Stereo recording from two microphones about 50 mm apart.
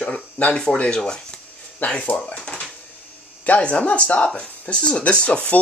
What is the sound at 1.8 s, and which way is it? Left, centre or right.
Speech, left.